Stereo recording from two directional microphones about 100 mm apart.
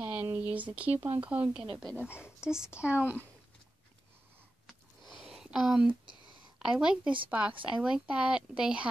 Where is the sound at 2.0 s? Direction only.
25° left (ahead or behind).